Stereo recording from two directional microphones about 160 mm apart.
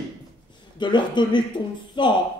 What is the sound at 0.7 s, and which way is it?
Speech, 30° left (ahead or behind).